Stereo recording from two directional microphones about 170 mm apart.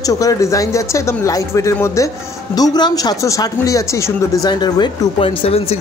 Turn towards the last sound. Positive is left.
turn(degrees=35)  # may be behind; listen again after turning